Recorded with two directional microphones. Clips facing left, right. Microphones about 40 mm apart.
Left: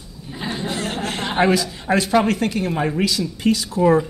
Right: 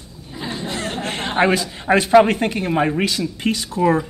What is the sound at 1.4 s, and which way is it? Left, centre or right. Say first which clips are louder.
Speech: right 1 dB; right.